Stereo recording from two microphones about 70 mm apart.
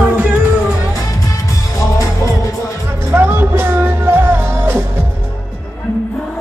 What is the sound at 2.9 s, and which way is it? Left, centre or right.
Music, right.